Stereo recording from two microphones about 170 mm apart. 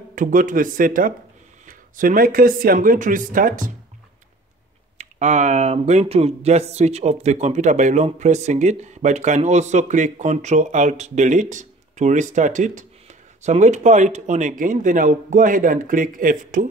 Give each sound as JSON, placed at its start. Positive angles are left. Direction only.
{"t": 0.1, "sound": "speech", "side_deg": -50}
{"t": 4.9, "sound": "speech", "side_deg": -45}